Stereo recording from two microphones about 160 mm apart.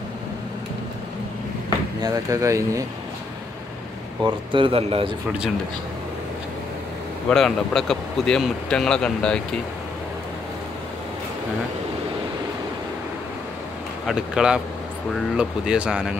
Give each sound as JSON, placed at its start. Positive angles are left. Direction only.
{"t": 2.0, "sound": "speech", "side_deg": -20}
{"t": 4.2, "sound": "speech", "side_deg": -30}
{"t": 7.2, "sound": "speech", "side_deg": 5}
{"t": 14.0, "sound": "speech", "side_deg": -5}